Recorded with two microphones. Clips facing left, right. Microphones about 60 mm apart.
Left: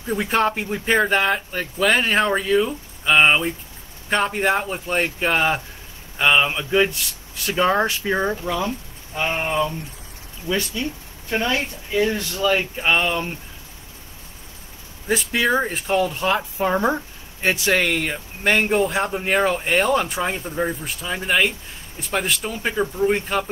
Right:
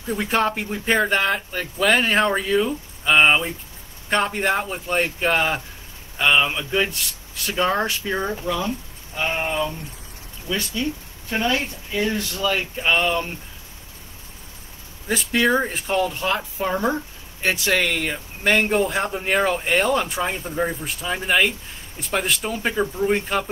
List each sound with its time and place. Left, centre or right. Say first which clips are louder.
0.0 s speech: left 1 dB; centre
8.0 s speech: left 3 dB; centre
10.5 s speech: left 1 dB; left
11.9 s speech: left 3 dB; centre
15.0 s speech: even; centre
16.5 s speech: left 2 dB; centre